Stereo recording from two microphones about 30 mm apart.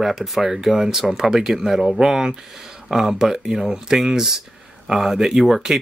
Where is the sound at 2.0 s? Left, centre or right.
Centre.